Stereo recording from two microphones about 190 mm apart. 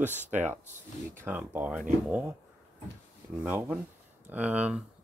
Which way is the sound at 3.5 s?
10° right (ahead or behind).